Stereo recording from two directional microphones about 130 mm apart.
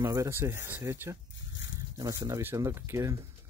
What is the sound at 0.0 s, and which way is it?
Speech, 25° right (ahead or behind).